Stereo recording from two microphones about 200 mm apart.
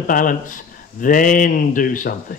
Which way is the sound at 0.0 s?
45° left (ahead or behind).